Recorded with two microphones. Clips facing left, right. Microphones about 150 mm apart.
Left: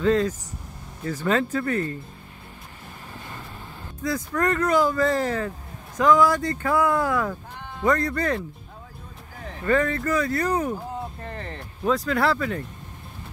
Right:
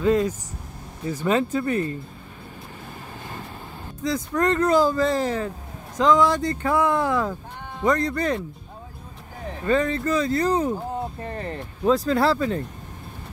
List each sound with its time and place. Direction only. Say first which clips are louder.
0.0 s speech: right 1 dB; 15° right (ahead or behind)
4.0 s speech: right 2 dB; 20° right (ahead or behind)
9.5 s speech: right 1 dB; 20° right (ahead or behind)
11.8 s speech: right 3 dB; 30° right (ahead or behind)